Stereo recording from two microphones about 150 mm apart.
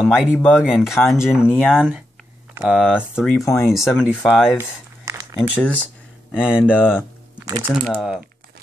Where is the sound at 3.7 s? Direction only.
Centre (ahead or behind).